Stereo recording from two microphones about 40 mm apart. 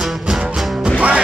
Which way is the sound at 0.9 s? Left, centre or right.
Right.